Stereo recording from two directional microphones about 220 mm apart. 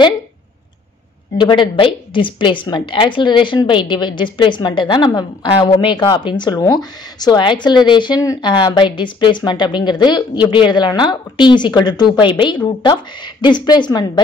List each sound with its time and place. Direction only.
1.4 s a woman's voice: 20° left (ahead or behind)